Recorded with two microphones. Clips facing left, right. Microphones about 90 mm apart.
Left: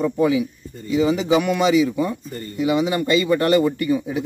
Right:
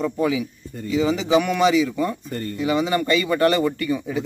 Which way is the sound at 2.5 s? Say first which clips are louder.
Left 2 dB; 15° left (ahead or behind).